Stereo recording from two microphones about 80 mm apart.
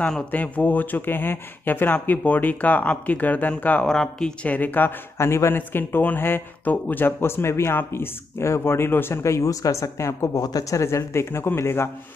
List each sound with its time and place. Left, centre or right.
0.3 s speech: centre
3.8 s speech: centre; by 4.9 s left
5.1 s speech: left